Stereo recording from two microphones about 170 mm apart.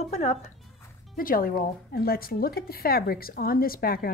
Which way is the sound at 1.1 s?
55° left (ahead or behind).